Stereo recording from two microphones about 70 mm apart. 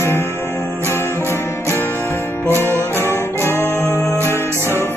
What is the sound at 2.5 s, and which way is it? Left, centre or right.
Music, left.